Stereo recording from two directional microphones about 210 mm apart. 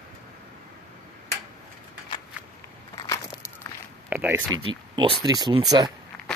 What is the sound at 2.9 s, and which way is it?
Crushing, 20° left (ahead or behind).